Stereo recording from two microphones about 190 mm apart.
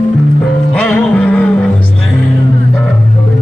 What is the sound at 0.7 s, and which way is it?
Music, 5° left (ahead or behind).